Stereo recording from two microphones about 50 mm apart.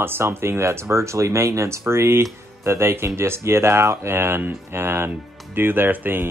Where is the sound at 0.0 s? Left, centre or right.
Right.